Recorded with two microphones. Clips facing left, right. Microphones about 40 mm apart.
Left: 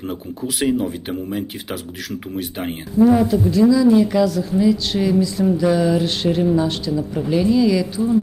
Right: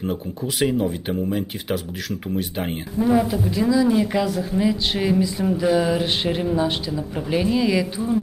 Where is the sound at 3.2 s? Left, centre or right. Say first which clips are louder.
Left 6 dB; centre.